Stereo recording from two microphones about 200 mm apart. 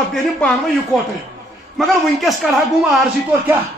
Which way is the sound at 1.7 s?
Centre (ahead or behind).